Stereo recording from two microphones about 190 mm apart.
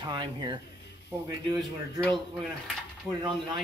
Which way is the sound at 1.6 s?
Centre (ahead or behind).